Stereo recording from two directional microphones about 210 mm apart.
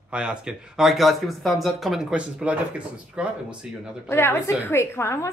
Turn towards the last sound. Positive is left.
turn(degrees=15)  # may be behind; listen again after turning